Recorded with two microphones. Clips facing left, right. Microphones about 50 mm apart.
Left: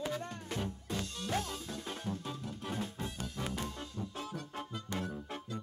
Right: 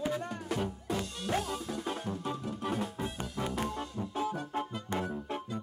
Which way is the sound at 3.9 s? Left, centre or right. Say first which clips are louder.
Right 8 dB; centre.